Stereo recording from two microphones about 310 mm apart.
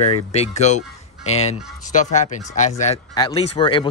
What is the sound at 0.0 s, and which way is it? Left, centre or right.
Speech, left.